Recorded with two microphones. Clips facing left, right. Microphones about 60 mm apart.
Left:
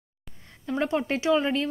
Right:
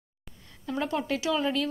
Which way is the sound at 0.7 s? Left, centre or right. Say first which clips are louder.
Left 3 dB; left.